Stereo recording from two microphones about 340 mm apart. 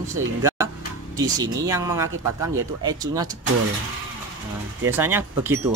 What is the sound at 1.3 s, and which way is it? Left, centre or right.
Speech, centre.